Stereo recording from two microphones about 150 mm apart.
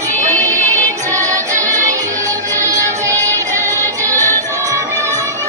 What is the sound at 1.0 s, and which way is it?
Music, 20° right (ahead or behind).